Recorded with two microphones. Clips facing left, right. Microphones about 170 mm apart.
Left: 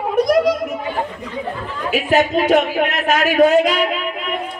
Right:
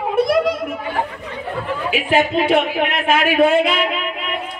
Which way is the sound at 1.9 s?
40° left (ahead or behind).